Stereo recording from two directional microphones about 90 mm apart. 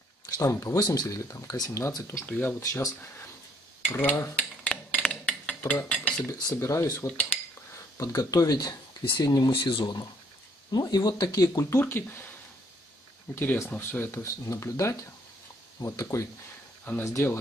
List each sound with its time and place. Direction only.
0.3 s speech: 35° left (ahead or behind)
0.7 s speech: 50° left (ahead or behind)
1.0 s speech: 35° left (ahead or behind)
2.2 s speech: 20° left (ahead or behind)
2.6 s speech: 35° left (ahead or behind)
3.8 s speech: 20° left (ahead or behind)
4.4 s a sound: 15° left (ahead or behind)
5.9 s cutlery: 10° left (ahead or behind)
6.5 s speech: 35° left (ahead or behind)
9.5 s speech: 70° left (ahead or behind)
10.7 s speech: 50° left (ahead or behind)
11.8 s speech: 25° left (ahead or behind)
13.3 s speech: 25° left (ahead or behind)